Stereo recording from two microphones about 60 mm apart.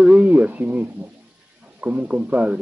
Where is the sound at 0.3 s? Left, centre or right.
Right.